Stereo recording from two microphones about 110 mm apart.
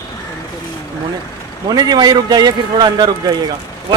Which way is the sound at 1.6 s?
40° right (ahead or behind).